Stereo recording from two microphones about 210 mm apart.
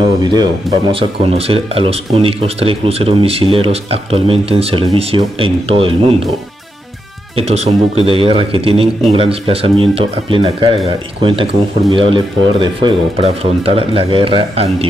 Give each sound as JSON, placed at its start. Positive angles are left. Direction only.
{"t": 0.2, "sound": "speech", "side_deg": -20}
{"t": 7.3, "sound": "speech", "side_deg": -30}